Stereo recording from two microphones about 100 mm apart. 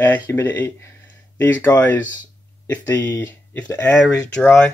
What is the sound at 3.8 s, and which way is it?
Speech, 15° left (ahead or behind).